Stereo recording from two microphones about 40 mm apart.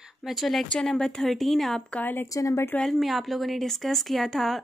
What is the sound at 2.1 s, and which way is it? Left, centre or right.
Speech, left.